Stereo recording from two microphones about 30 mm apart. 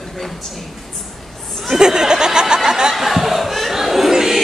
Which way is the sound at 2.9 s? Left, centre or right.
Centre.